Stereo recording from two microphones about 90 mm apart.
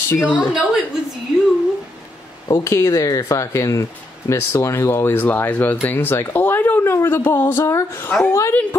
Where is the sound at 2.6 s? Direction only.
35° left (ahead or behind).